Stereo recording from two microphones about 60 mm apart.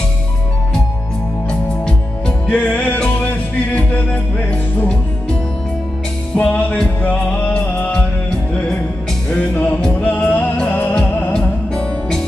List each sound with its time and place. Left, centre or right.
1.5 s music: centre
2.4 s music: left
6.3 s music: left
9.4 s music: left
10.7 s music: left
11.3 s music: centre